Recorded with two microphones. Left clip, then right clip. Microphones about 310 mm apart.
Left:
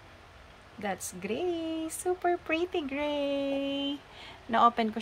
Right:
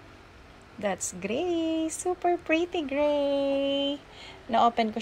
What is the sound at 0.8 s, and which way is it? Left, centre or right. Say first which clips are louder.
A woman's voice: right 4 dB; centre.